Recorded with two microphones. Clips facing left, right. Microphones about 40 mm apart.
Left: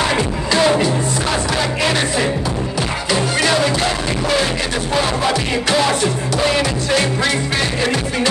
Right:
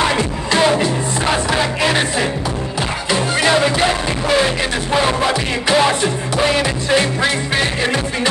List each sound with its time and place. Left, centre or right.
0.2 s music: centre
3.3 s music: centre
4.9 s music: centre